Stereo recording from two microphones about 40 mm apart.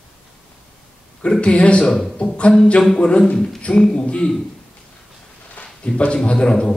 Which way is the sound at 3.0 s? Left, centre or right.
Left.